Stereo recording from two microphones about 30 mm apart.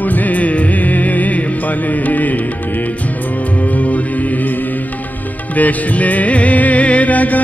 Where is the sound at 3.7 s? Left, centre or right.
Left.